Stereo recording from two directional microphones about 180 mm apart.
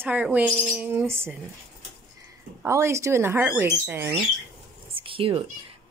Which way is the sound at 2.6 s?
15° right (ahead or behind).